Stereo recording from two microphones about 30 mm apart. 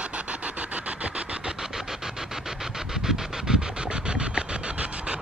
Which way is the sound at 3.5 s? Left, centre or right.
Right.